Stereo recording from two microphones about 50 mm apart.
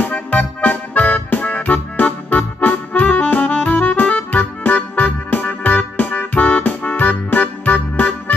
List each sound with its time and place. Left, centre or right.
0.0 s music: left